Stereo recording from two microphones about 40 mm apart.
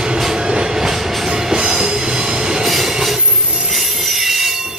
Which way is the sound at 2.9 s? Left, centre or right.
Centre.